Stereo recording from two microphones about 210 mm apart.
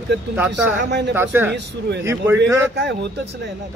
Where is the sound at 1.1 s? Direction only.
10° right (ahead or behind).